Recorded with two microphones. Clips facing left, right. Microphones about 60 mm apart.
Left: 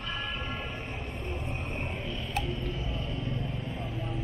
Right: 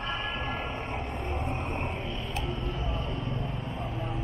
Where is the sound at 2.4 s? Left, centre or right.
Right.